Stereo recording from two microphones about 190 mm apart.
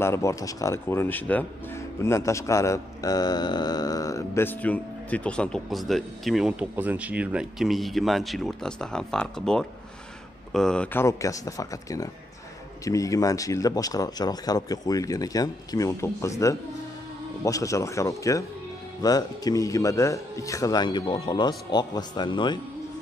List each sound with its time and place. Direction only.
0.0 s a man's voice: 15° left (ahead or behind)